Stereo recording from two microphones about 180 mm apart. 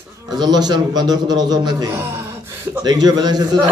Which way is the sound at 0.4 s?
20° right (ahead or behind).